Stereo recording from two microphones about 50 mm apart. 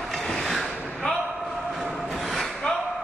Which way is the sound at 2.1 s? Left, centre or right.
Centre.